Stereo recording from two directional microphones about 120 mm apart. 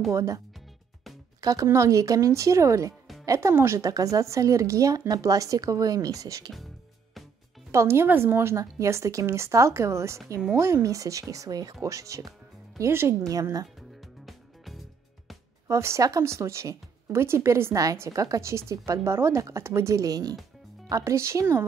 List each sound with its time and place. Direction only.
0.1 s speech: 25° right (ahead or behind)
1.4 s speech: 30° right (ahead or behind)
7.7 s speech: 20° right (ahead or behind)
14.2 s music: centre (ahead or behind)
15.7 s speech: 25° right (ahead or behind)